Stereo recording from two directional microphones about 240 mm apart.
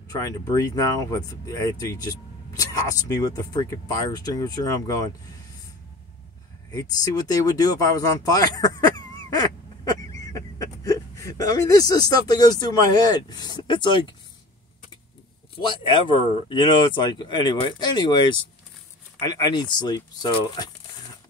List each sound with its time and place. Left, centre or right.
0.1 s speech: centre
6.7 s speech: centre
15.5 s speech: left